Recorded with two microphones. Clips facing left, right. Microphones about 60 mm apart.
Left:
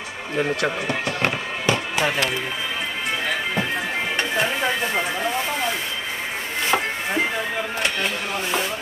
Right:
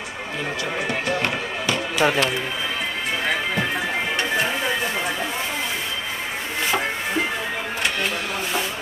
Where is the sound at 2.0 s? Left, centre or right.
Right.